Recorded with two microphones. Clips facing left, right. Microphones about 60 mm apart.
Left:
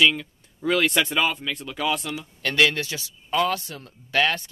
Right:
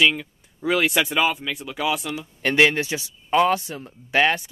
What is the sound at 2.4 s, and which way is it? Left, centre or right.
A man's voice, right.